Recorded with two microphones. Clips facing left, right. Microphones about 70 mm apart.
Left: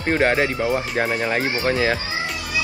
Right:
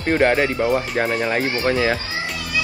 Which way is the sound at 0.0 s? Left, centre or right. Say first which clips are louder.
Right 2 dB; centre.